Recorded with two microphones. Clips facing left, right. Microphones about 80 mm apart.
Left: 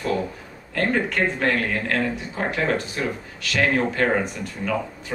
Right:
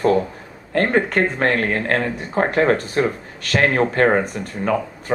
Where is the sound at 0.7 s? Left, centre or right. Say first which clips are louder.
Right 5 dB; right.